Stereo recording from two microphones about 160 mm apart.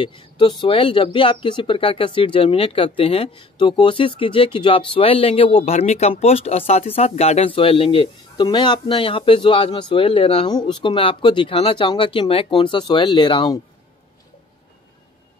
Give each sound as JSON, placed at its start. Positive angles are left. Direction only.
{"t": 0.0, "sound": "speech", "side_deg": 30}